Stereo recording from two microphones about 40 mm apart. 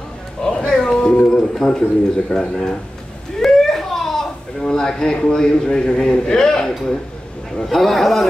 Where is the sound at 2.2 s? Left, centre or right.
Centre.